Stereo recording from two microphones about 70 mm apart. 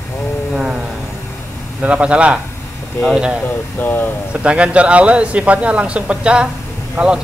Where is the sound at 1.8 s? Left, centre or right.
Centre.